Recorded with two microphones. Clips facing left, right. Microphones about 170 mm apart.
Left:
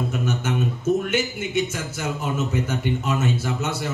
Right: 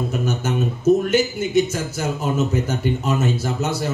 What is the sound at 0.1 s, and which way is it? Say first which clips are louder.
Speech: right 2 dB; 40° right (ahead or behind).